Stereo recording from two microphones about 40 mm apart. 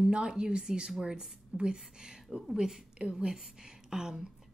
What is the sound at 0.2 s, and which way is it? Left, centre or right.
A woman's voice, centre.